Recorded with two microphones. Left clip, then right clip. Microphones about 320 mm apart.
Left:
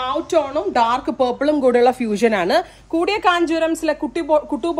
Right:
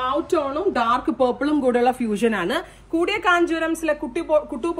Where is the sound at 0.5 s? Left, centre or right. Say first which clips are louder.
Left 3 dB; centre.